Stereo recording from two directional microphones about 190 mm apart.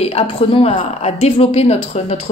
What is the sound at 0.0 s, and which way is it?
A woman's voice, 30° left (ahead or behind).